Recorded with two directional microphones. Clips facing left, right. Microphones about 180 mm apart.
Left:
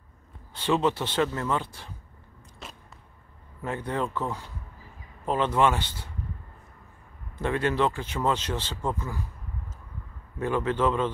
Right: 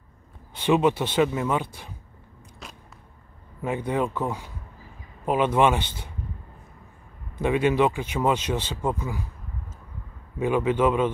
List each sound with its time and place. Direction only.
0.6 s speech: 15° right (ahead or behind)
2.6 s a sound: centre (ahead or behind)
3.6 s speech: 15° right (ahead or behind)
7.3 s speech: 15° right (ahead or behind)
10.4 s speech: 15° right (ahead or behind)